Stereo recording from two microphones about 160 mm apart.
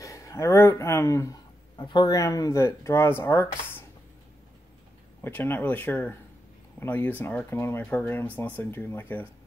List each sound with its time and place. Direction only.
0.0 s speech: 20° left (ahead or behind)
5.2 s speech: 15° left (ahead or behind)